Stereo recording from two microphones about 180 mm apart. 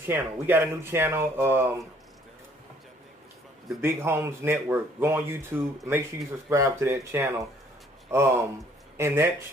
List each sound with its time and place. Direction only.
0.0 s speech: 10° right (ahead or behind)
3.8 s speech: 15° right (ahead or behind)